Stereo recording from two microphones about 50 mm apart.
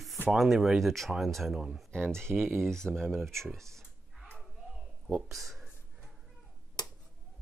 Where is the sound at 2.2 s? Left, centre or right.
Right.